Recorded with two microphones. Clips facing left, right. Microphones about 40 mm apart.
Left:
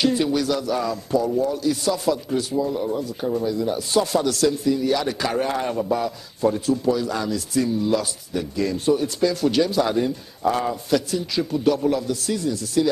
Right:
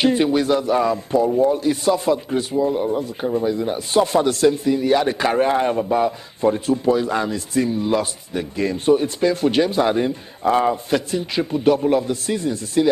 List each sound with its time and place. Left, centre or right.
0.0 s speech: right